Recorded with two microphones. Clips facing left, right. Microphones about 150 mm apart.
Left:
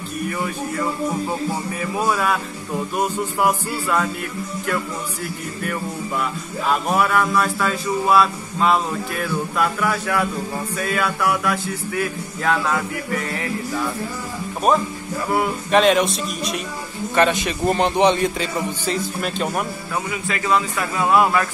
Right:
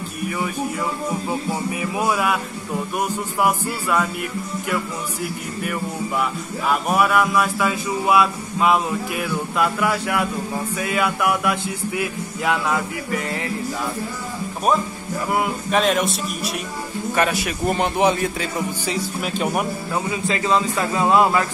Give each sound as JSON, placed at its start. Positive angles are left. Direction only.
{"t": 1.7, "sound": "speech", "side_deg": -15}
{"t": 6.7, "sound": "speech", "side_deg": -10}
{"t": 15.7, "sound": "speech", "side_deg": 0}
{"t": 20.1, "sound": "a man's voice", "side_deg": -25}